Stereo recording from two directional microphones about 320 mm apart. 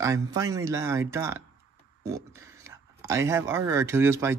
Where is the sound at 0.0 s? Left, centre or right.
Centre.